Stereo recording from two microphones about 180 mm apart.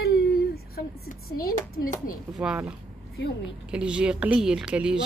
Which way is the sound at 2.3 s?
5° right (ahead or behind).